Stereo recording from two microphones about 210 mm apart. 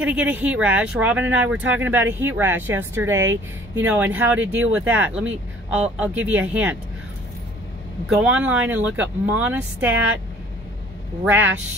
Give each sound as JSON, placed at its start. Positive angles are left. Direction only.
{"t": 0.0, "sound": "speech", "side_deg": -5}
{"t": 8.1, "sound": "speech", "side_deg": -5}
{"t": 11.2, "sound": "speech", "side_deg": -10}